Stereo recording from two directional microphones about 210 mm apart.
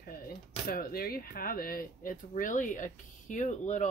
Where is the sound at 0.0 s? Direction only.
45° left (ahead or behind).